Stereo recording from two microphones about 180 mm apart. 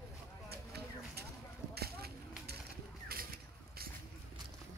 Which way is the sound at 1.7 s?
60° right (ahead or behind).